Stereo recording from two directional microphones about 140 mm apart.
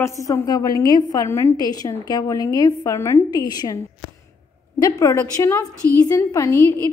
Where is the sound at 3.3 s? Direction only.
30° left (ahead or behind).